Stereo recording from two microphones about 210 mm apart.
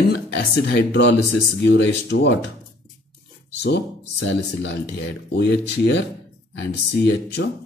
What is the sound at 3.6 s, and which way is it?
Speech, 55° left (ahead or behind).